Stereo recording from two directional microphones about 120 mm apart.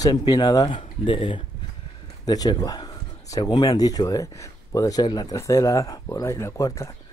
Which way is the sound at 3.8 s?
30° left (ahead or behind).